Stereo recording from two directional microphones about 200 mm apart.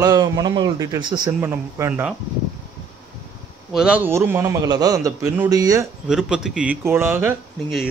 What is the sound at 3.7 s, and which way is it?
A man's voice, 5° right (ahead or behind).